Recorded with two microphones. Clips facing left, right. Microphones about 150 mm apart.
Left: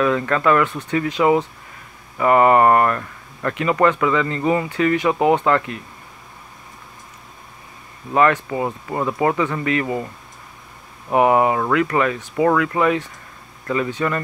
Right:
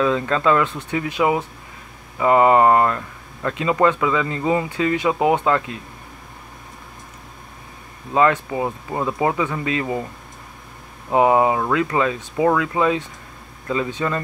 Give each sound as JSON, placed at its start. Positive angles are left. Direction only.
{"t": 0.0, "sound": "speech", "side_deg": -20}
{"t": 0.7, "sound": "speech", "side_deg": 15}
{"t": 0.9, "sound": "speech", "side_deg": -15}
{"t": 8.1, "sound": "speech", "side_deg": -15}
{"t": 11.1, "sound": "speech", "side_deg": -20}